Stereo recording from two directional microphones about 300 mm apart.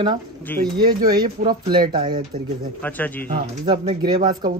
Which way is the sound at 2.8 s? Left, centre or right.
Centre.